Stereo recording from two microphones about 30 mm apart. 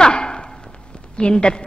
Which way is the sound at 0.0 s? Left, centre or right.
Left.